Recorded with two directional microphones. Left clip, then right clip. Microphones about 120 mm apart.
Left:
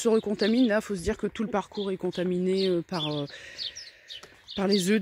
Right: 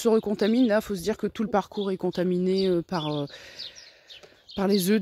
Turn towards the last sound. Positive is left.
turn(degrees=-30)  # may be behind; listen again after turning